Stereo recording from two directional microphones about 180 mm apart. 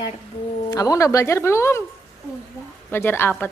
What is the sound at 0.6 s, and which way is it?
A woman's voice, 20° left (ahead or behind).